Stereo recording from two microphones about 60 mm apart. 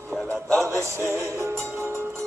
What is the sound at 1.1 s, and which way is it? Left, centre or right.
Music, right.